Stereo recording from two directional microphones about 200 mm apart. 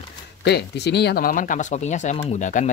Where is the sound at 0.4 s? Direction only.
55° left (ahead or behind).